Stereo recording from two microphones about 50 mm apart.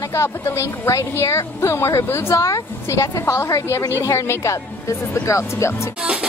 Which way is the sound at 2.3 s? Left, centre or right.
Left.